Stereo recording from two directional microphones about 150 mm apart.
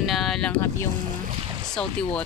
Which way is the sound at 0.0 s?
Centre (ahead or behind).